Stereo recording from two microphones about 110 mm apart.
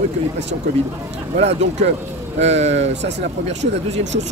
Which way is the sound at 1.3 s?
80° right.